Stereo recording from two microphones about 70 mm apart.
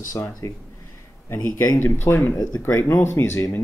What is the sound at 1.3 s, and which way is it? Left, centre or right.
Speech, left.